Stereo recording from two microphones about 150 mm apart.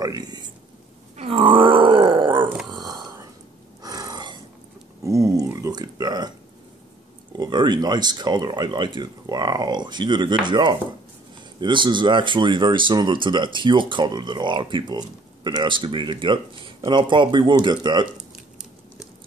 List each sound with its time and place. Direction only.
0.0 s speech: 25° right (ahead or behind)
1.1 s groan: 40° right (ahead or behind)
2.7 s a sound: 30° right (ahead or behind)
3.8 s gasp: 25° right (ahead or behind)
5.0 s a sound: 20° right (ahead or behind)
7.3 s speech: 30° right (ahead or behind)